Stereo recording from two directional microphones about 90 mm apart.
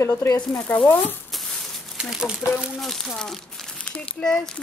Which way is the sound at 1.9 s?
5° right (ahead or behind).